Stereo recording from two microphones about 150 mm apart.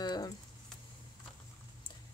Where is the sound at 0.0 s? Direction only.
30° left (ahead or behind).